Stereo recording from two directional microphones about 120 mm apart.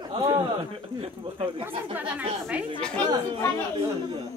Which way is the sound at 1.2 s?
45° right (ahead or behind).